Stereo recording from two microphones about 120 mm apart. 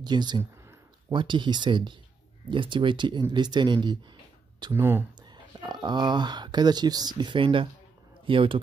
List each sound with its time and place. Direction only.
0.0 s speech: 35° right (ahead or behind)
0.4 s a sound: 20° right (ahead or behind)
1.1 s speech: 40° right (ahead or behind)
4.7 s speech: 20° right (ahead or behind)
5.3 s a man's voice: 40° right (ahead or behind)